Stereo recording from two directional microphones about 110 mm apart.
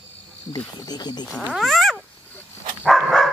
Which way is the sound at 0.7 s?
40° left (ahead or behind).